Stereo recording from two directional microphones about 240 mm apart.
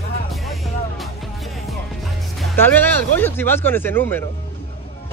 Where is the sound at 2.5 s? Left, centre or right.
Centre.